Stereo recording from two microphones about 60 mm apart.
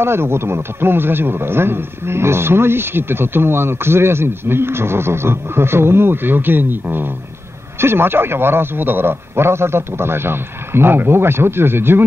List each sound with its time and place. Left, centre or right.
0.0 s a man's voice: right